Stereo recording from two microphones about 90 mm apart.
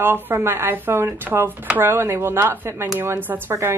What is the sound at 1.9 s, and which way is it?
A woman's voice, 30° right (ahead or behind).